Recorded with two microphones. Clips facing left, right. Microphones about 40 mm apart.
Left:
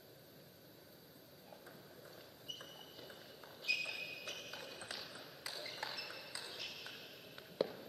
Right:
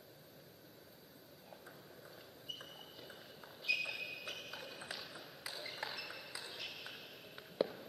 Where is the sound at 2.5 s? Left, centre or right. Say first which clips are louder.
Right 1 dB; centre.